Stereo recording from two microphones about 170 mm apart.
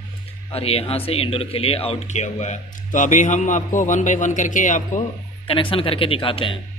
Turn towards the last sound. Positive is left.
turn(degrees=30)  # may be behind; listen again after turning